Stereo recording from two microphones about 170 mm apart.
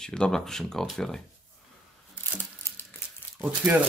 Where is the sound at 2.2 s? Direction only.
10° left (ahead or behind).